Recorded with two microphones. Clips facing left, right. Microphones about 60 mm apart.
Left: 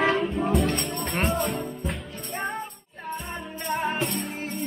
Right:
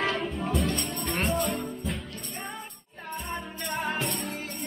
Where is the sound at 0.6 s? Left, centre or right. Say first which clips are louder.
Left 3 dB; left.